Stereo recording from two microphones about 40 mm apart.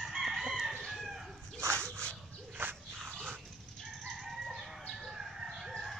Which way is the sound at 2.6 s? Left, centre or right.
Right.